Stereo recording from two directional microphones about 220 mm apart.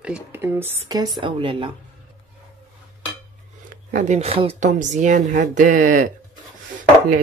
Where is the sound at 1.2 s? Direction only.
25° right (ahead or behind).